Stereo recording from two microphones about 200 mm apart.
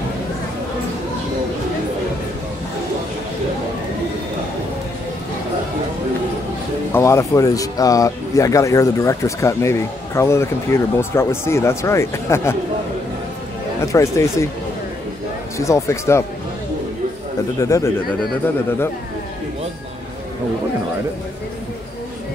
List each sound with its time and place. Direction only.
6.9 s speech: 15° left (ahead or behind)
13.7 s speech: 15° left (ahead or behind)
15.5 s speech: 15° left (ahead or behind)
17.6 s speech: 15° left (ahead or behind)